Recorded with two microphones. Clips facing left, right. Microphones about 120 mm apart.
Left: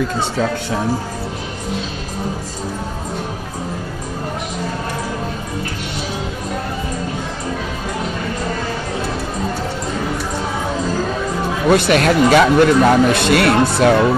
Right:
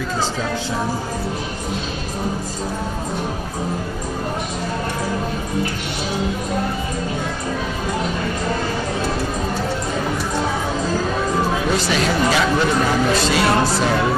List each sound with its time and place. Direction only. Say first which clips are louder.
11.7 s speech: left 6 dB; 60° left (ahead or behind)